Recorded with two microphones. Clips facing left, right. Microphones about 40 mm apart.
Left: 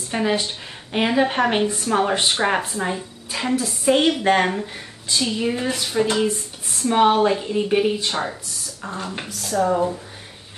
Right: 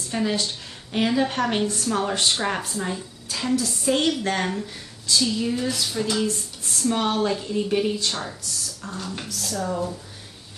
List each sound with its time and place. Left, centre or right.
0.1 s a woman's voice: left